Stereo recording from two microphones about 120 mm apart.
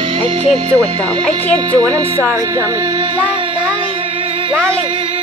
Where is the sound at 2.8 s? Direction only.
40° right (ahead or behind).